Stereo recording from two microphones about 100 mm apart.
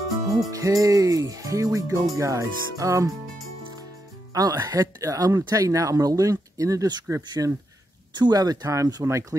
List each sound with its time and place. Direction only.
0.5 s speech: 35° right (ahead or behind)
4.3 s speech: 40° right (ahead or behind)
8.1 s speech: 45° right (ahead or behind)